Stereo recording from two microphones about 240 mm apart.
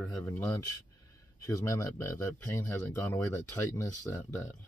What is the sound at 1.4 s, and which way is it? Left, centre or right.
Speech, centre.